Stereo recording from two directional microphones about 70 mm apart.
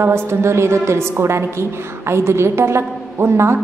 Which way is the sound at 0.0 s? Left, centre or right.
Right.